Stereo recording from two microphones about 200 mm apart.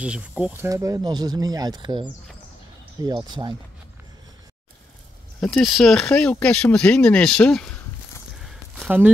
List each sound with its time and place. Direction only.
0.0 s speech: 5° right (ahead or behind); by 3.5 s 25° right (ahead or behind)
5.4 s speech: centre (ahead or behind)
8.4 s a sound: 5° right (ahead or behind)